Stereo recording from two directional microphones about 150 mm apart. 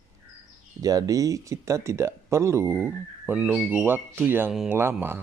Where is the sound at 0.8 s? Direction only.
25° right (ahead or behind).